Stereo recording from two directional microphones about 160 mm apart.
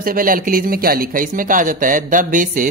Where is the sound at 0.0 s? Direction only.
60° right (ahead or behind).